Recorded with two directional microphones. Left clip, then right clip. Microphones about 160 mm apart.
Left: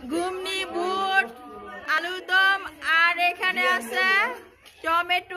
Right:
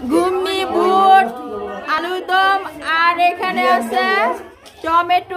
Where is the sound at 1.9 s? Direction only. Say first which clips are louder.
Right 5 dB; 5° right (ahead or behind).